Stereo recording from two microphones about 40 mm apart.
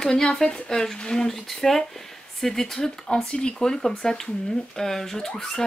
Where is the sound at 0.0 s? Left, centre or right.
Centre.